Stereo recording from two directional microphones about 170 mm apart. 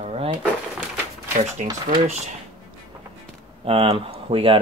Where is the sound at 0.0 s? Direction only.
35° right (ahead or behind).